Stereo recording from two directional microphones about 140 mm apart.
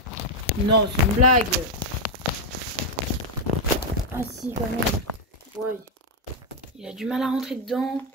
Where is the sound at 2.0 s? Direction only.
85° left.